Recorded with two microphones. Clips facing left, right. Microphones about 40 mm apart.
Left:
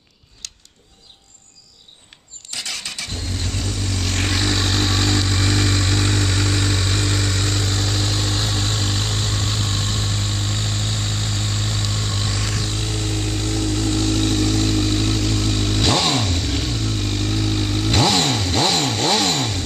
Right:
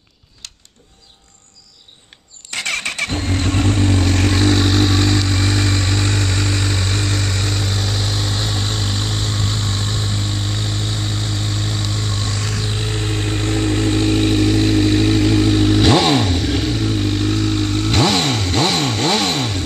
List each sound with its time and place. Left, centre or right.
0.4 s a sound: centre
2.5 s vehicle: right
4.2 s vehicle: centre
12.6 s vehicle: centre